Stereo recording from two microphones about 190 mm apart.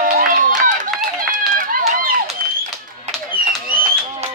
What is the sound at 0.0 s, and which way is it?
Run, 45° right (ahead or behind).